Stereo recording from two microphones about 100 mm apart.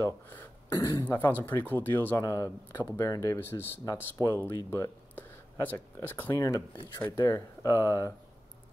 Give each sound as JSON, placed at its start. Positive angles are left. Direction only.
{"t": 0.0, "sound": "speech", "side_deg": 25}
{"t": 3.3, "sound": "speech", "side_deg": 25}
{"t": 7.1, "sound": "speech", "side_deg": 35}